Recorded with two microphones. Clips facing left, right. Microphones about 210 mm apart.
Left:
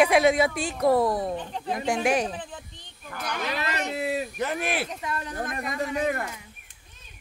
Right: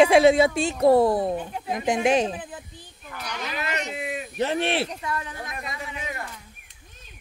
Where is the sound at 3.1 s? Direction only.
50° left (ahead or behind).